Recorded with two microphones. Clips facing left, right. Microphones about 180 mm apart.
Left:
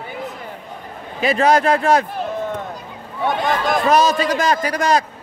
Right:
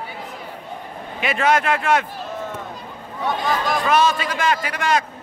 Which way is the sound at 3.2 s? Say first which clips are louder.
Left 3 dB; 50° left (ahead or behind).